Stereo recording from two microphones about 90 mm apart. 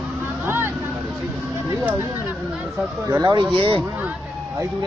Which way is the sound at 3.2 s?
60° right (ahead or behind).